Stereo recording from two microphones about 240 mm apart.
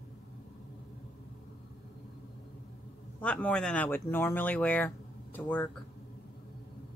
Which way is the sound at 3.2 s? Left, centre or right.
Centre.